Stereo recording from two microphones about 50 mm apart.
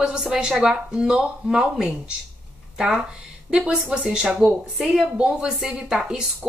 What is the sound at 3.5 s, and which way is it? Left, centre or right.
A woman's voice, centre.